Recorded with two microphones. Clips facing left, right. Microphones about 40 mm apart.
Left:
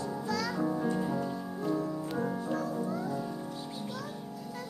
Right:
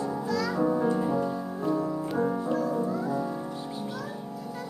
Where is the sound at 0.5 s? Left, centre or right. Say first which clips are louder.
Right 8 dB; centre.